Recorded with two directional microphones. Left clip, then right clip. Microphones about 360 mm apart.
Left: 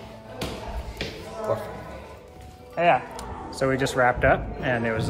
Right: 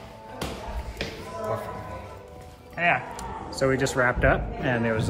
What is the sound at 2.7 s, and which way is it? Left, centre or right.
Speech, centre.